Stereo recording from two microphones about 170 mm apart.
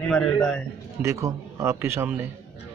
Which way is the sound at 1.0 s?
20° right (ahead or behind).